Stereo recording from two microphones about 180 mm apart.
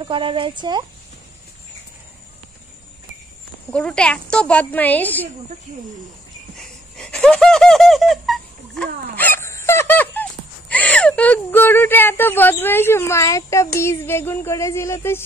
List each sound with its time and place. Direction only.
0.0 s speech: 30° right (ahead or behind)
3.7 s speech: 5° left (ahead or behind)
6.5 s squeak: 5° left (ahead or behind)
10.7 s a sound: 10° left (ahead or behind)
13.7 s speech: 15° left (ahead or behind)